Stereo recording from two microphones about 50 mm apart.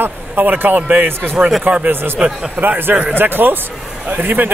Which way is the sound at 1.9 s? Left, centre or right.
Right.